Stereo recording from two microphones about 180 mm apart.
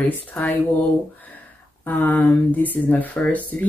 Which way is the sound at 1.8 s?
10° left (ahead or behind).